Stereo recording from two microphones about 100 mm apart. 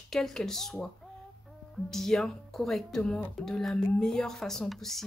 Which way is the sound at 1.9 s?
5° left (ahead or behind).